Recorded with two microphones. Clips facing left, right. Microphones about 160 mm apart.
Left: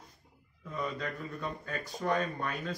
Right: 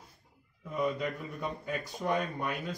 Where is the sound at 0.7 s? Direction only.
15° right (ahead or behind).